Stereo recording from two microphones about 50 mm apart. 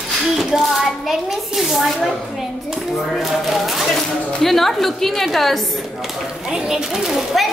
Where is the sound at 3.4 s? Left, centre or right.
Centre.